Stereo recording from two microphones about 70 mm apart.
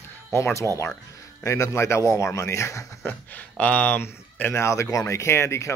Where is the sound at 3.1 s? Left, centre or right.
Left.